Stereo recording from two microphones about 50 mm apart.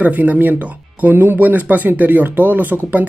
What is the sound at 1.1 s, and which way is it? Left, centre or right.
Speech, right.